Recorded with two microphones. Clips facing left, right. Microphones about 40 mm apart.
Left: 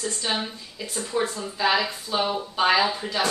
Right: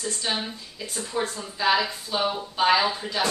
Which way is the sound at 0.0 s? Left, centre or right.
Centre.